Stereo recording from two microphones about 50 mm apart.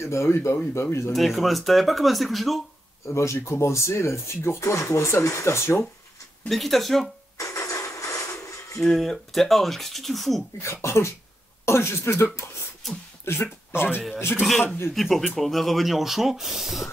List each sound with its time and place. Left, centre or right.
0.0 s speech: left
1.1 s speech: centre
3.1 s speech: left
6.5 s speech: centre
7.3 s music: left
8.8 s speech: centre
10.6 s a man's voice: left
15.0 s speech: centre